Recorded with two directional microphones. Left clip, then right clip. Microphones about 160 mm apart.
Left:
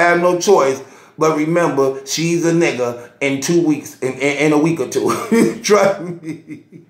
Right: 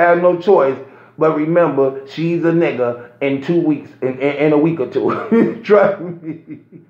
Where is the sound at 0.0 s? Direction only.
15° left (ahead or behind).